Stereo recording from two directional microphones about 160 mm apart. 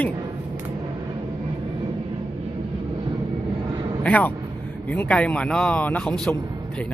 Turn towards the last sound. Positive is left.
turn(degrees=10)  # may be behind; listen again after turning